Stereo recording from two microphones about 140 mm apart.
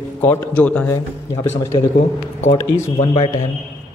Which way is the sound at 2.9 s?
40° left (ahead or behind).